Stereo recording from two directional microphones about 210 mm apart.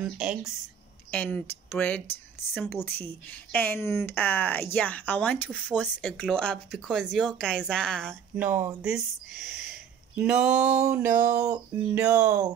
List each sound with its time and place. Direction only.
0.0 s speech: 5° right (ahead or behind)
1.1 s speech: 10° left (ahead or behind)
8.1 s speech: 10° right (ahead or behind)